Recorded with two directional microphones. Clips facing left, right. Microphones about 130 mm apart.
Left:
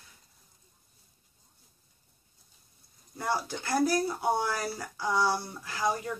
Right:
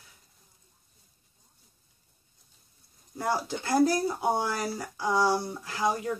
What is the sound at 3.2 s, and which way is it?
Speech, 15° right (ahead or behind).